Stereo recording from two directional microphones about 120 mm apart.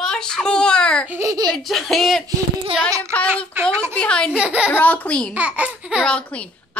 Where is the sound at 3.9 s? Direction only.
10° left (ahead or behind).